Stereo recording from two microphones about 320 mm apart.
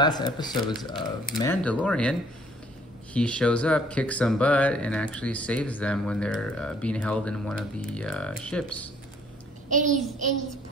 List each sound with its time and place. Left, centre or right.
0.0 s speech: centre
9.7 s a child's voice: right